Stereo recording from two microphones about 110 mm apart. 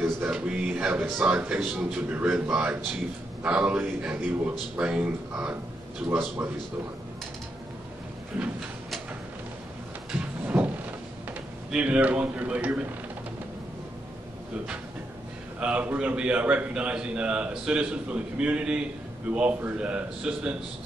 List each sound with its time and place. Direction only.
0.0 s a man's voice: 10° right (ahead or behind)
8.3 s a man's voice: 10° right (ahead or behind)
10.4 s a sound: 15° right (ahead or behind)
11.7 s a man's voice: 10° right (ahead or behind)
15.6 s a man's voice: 10° right (ahead or behind)